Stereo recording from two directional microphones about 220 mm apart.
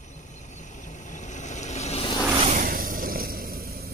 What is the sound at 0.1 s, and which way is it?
Vehicle, 35° left (ahead or behind).